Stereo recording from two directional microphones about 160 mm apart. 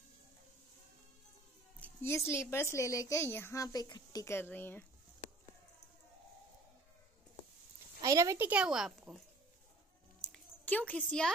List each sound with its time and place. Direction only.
1.8 s speech: 15° left (ahead or behind)
8.0 s a woman's voice: 20° right (ahead or behind); by 9.2 s centre (ahead or behind)
10.2 s a sound: 5° left (ahead or behind)